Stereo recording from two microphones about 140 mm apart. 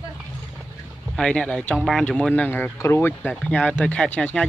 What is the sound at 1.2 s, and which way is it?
Speech, 5° left (ahead or behind).